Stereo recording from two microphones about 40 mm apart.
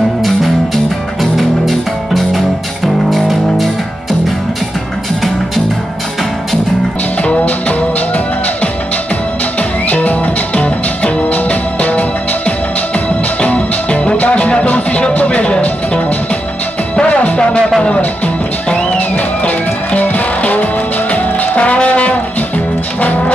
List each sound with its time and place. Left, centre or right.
1.2 s music: centre
7.2 s music: left
9.6 s music: left
17.4 s music: left
18.9 s music: left